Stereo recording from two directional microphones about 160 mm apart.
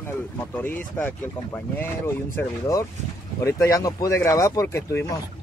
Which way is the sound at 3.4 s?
20° left (ahead or behind).